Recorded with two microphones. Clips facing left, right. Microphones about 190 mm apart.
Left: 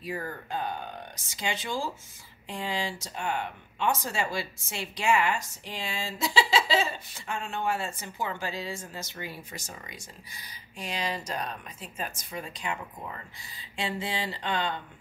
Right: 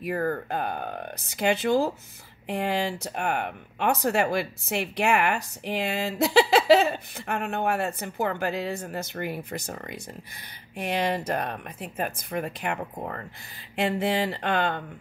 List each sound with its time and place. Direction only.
0.0 s speech: 55° right (ahead or behind)